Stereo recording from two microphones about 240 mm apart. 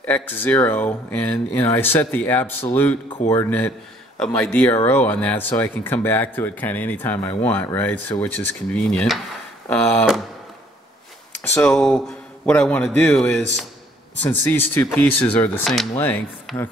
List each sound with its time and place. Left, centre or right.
0.0 s a man's voice: centre
11.4 s a man's voice: centre